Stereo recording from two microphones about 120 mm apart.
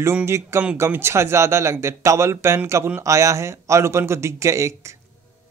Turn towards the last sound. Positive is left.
turn(degrees=-25)  # may be behind; listen again after turning